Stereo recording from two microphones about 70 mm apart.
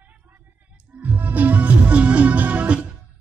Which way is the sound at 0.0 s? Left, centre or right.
Right.